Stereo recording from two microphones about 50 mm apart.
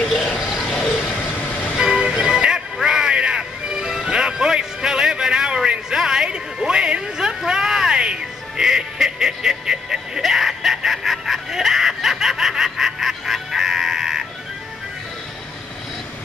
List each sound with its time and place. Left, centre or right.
0.8 s vehicle: centre
1.8 s music: centre